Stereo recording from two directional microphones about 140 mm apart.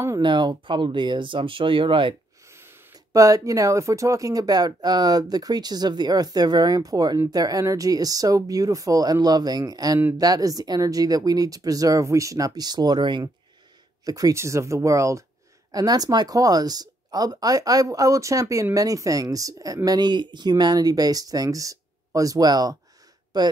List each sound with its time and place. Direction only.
0.2 s speech: 35° right (ahead or behind)
2.4 s speech: 15° right (ahead or behind)